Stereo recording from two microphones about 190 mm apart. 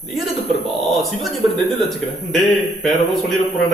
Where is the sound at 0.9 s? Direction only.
Centre (ahead or behind).